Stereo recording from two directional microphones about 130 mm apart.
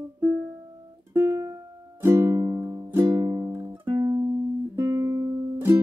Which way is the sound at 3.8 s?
35° right (ahead or behind).